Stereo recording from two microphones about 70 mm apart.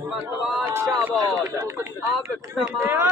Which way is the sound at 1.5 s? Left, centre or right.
Right.